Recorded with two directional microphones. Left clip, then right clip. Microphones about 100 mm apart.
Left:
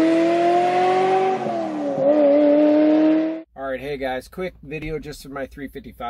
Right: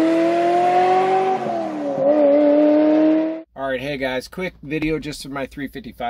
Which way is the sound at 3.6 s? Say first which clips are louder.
Right 6 dB; 25° right (ahead or behind).